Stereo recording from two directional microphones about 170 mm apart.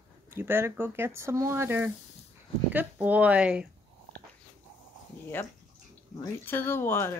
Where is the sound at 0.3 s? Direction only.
15° right (ahead or behind).